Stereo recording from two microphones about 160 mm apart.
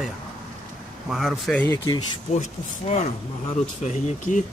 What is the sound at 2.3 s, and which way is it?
Speech, 45° left (ahead or behind).